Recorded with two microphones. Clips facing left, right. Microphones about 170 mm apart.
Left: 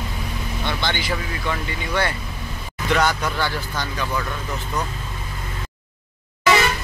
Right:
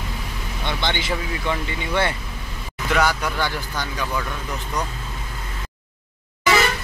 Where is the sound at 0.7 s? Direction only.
20° right (ahead or behind).